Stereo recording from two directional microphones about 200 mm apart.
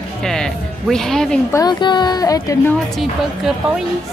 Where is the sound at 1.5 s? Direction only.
20° left (ahead or behind).